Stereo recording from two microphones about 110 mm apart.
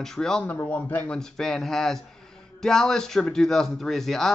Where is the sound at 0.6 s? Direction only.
15° left (ahead or behind).